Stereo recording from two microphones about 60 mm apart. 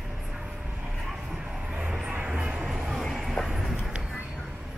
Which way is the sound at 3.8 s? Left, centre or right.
Centre.